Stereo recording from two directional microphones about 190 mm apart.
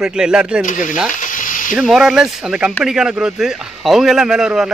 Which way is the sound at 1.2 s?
45° left (ahead or behind).